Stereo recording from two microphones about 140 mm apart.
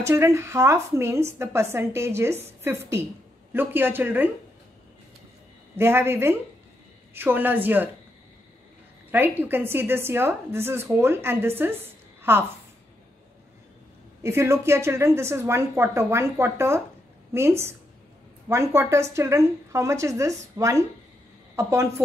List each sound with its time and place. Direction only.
0.0 s a woman's voice: 20° right (ahead or behind)
5.8 s a woman's voice: 15° right (ahead or behind)
9.1 s a woman's voice: 15° right (ahead or behind)
14.2 s a woman's voice: 20° right (ahead or behind)